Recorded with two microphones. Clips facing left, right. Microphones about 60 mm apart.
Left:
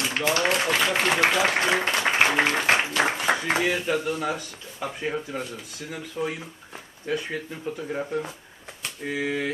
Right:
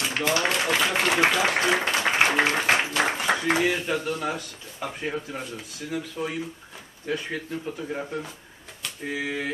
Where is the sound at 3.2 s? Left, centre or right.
Centre.